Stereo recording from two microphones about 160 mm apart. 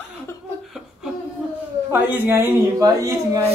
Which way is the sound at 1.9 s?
15° right (ahead or behind).